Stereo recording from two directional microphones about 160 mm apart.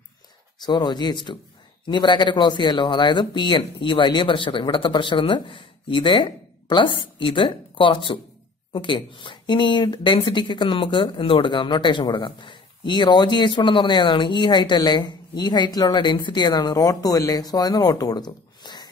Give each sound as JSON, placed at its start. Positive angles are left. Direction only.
{"t": 0.6, "sound": "speech", "side_deg": 25}